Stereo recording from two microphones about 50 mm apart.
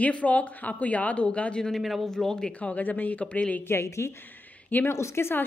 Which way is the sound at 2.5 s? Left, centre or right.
Left.